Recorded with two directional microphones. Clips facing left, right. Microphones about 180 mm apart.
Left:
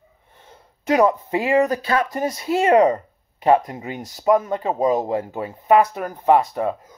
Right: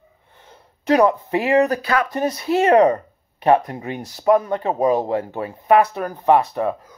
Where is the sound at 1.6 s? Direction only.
25° left (ahead or behind).